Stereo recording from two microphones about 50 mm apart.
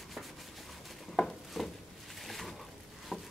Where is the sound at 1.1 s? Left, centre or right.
Centre.